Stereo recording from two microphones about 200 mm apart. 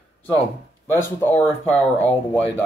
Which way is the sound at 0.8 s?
10° left (ahead or behind).